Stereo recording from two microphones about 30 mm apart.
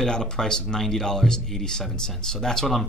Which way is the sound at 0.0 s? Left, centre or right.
Left.